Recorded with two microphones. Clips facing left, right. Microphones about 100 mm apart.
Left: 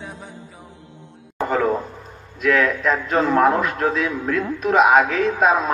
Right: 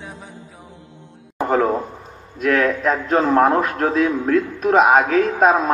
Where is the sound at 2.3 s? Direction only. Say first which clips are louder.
Right 1 dB; 40° right (ahead or behind).